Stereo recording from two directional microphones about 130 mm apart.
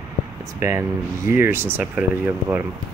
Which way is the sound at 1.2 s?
20° right (ahead or behind).